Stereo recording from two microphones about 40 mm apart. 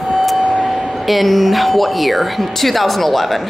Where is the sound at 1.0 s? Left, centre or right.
Centre.